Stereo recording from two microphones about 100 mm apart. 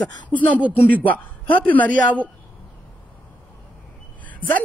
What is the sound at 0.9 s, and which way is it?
Speech, 15° left (ahead or behind).